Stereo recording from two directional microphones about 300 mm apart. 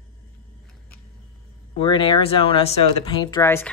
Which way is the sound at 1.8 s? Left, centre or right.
Centre.